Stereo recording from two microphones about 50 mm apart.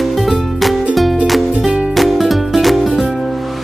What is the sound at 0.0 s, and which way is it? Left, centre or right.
Music, centre.